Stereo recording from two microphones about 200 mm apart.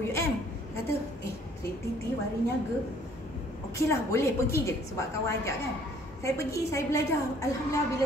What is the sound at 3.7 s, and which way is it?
A woman's voice, 15° left (ahead or behind).